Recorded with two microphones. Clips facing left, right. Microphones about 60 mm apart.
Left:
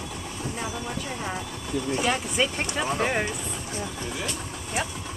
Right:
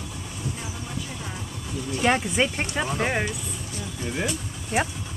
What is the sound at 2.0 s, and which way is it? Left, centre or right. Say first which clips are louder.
Speech: right 6 dB; right.